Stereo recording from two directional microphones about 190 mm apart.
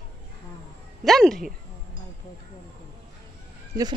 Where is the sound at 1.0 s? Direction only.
Centre (ahead or behind).